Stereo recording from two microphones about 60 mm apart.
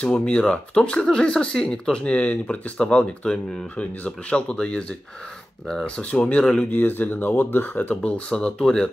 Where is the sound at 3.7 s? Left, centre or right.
Left.